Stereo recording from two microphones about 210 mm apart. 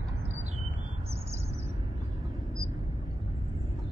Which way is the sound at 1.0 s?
30° right (ahead or behind).